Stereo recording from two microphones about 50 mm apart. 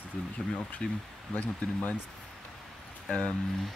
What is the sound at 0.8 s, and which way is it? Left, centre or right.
Speech, left.